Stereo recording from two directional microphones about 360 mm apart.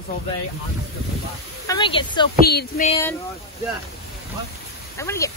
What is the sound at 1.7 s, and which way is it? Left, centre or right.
Speech, centre.